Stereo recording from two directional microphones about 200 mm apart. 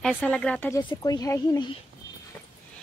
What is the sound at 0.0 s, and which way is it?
A woman's voice, 5° left (ahead or behind).